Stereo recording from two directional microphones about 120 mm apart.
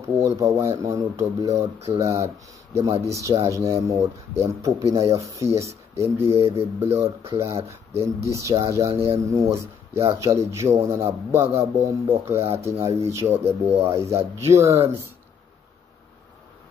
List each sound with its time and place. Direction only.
0.2 s speech: 25° right (ahead or behind)
13.4 s speech: 60° right (ahead or behind)
13.7 s speech: 20° right (ahead or behind)